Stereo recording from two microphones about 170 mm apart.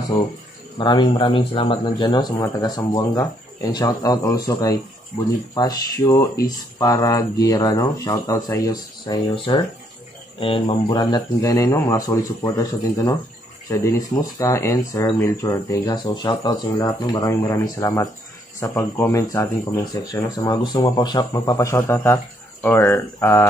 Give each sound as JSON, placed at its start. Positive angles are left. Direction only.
{"t": 0.7, "sound": "speech", "side_deg": 25}